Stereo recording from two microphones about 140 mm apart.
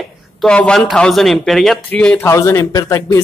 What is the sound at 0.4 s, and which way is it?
A man's voice, 5° left (ahead or behind).